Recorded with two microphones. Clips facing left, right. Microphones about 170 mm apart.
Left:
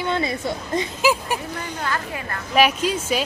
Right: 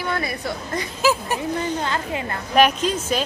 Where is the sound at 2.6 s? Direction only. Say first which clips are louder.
Right 1 dB; 5° left (ahead or behind).